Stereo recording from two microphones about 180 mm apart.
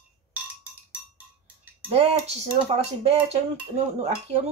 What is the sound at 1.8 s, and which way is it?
Speech, 35° right (ahead or behind).